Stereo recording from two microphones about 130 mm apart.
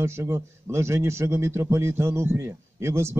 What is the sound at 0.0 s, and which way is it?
A man's voice, 20° right (ahead or behind).